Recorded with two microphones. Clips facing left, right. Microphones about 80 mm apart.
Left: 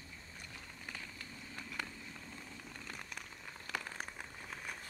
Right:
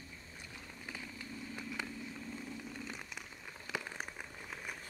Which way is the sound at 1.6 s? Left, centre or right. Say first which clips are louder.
Right 1 dB; centre.